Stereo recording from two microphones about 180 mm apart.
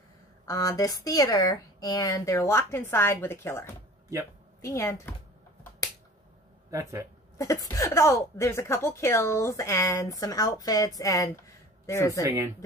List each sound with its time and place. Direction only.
0.5 s speech: 20° left (ahead or behind)
6.7 s speech: 15° right (ahead or behind)
7.3 s speech: 15° left (ahead or behind)
12.1 s speech: 15° right (ahead or behind)